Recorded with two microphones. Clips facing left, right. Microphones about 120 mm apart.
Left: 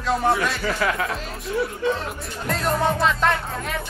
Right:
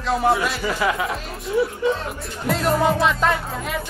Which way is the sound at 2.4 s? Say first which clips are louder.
Right 3 dB; 5° right (ahead or behind).